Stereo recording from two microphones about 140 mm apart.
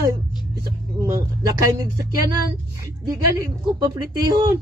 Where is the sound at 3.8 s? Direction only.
30° right (ahead or behind).